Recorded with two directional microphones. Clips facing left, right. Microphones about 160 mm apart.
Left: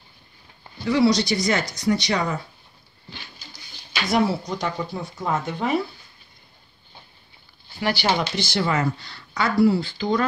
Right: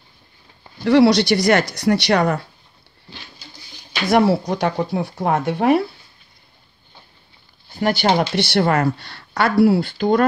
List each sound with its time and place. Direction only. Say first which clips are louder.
0.8 s speech: right 6 dB; 70° right (ahead or behind)
4.1 s speech: right 6 dB; 65° right (ahead or behind)
7.7 s speech: right 5 dB; 45° right (ahead or behind)
8.2 s speech: right 6 dB; 60° right (ahead or behind)